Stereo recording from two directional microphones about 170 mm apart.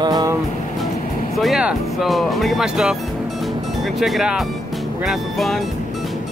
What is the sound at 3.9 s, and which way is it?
Speech, centre (ahead or behind).